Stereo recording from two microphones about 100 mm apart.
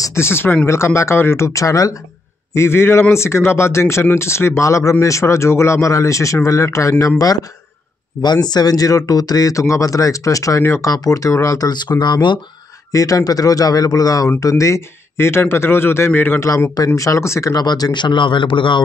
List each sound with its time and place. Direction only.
0.0 s speech: 25° left (ahead or behind); by 12.4 s 50° left (ahead or behind)
12.9 s speech: 35° left (ahead or behind); by 16.4 s 20° left (ahead or behind)
16.4 s speech: 35° left (ahead or behind); by 18.8 s 55° left (ahead or behind)